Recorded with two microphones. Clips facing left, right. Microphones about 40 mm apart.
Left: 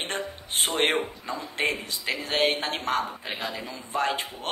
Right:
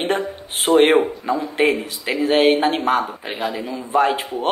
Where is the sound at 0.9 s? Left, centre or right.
Right.